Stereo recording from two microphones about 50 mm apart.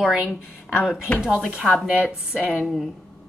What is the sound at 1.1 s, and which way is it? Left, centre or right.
Speech, left.